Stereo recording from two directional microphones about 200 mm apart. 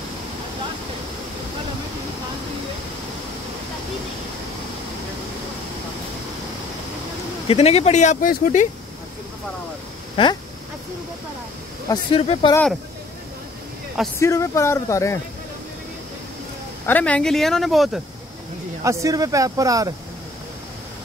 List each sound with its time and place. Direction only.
7.4 s speech: 30° left (ahead or behind)
10.2 s speech: 25° left (ahead or behind)
11.9 s speech: 30° left (ahead or behind)
14.2 s speech: 15° left (ahead or behind)
16.8 s speech: 10° left (ahead or behind)
18.9 s speech: 15° right (ahead or behind)